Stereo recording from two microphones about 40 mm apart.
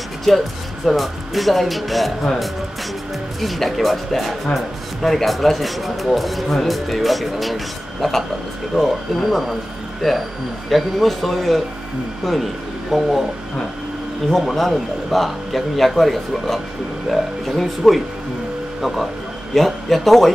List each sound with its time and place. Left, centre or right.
0.3 s speech: centre
3.3 s speech: centre
14.3 s speech: centre